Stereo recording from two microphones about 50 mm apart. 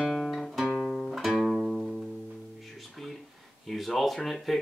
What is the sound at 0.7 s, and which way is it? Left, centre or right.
Music, centre.